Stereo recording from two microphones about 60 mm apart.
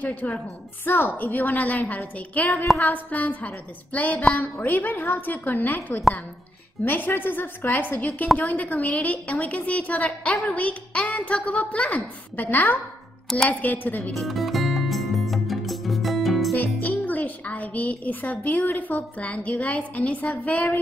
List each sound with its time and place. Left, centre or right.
0.0 s speech: left
6.8 s a woman's voice: left
14.1 s music: centre
16.5 s speech: left